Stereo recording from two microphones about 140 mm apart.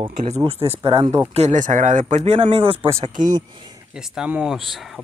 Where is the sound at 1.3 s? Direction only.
50° right (ahead or behind).